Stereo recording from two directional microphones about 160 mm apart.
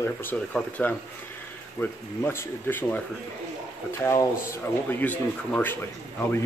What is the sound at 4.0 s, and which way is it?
Speech, 20° left (ahead or behind).